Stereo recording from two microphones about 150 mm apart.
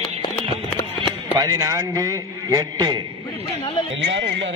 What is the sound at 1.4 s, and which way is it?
A man's voice, 25° right (ahead or behind).